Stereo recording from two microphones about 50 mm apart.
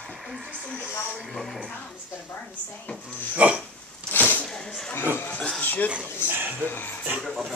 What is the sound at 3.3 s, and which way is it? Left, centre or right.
Speech, right.